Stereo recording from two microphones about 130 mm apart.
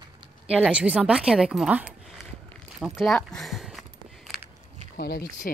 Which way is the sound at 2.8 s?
Centre (ahead or behind).